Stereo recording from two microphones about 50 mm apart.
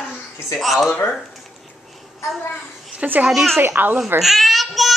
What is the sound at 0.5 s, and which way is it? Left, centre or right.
Speech, centre.